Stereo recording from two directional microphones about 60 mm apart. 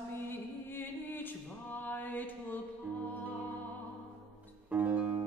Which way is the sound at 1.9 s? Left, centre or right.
Left.